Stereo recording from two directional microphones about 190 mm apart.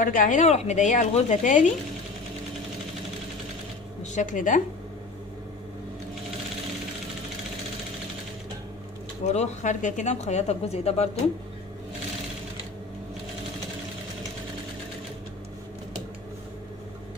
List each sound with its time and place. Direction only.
0.0 s speech: 45° left (ahead or behind)
4.0 s speech: 40° left (ahead or behind)
9.2 s speech: 35° left (ahead or behind)